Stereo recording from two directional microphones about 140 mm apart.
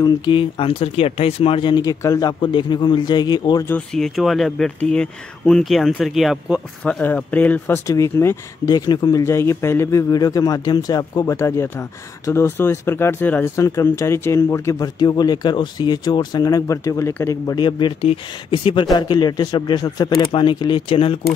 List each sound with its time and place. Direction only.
0.0 s speech: 35° left (ahead or behind)
1.8 s speech: 25° left (ahead or behind)
3.6 s speech: 10° left (ahead or behind); by 9.2 s 30° left (ahead or behind)
9.2 s speech: 20° left (ahead or behind); by 21.2 s 40° left (ahead or behind)